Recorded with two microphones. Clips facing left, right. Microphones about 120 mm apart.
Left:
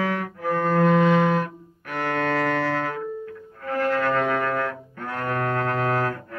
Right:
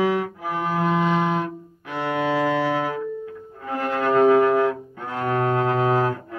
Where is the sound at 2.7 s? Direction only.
15° right (ahead or behind).